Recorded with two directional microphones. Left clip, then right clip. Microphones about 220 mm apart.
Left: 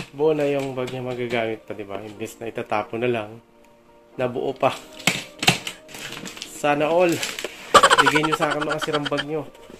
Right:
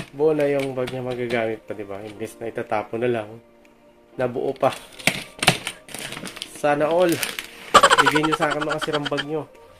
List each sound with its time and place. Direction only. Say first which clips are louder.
0.2 s speech: right 1 dB; centre (ahead or behind)
5.0 s mechanisms: even; 35° right (ahead or behind)
6.6 s speech: even; centre (ahead or behind)